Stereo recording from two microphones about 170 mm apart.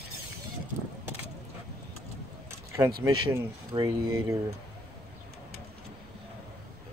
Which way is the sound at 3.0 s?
15° right (ahead or behind).